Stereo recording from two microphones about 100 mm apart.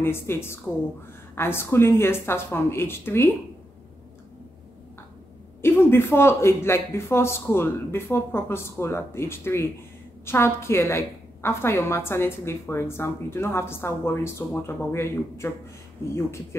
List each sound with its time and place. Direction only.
0.0 s a woman's voice: 25° left (ahead or behind)
5.6 s a woman's voice: 25° left (ahead or behind)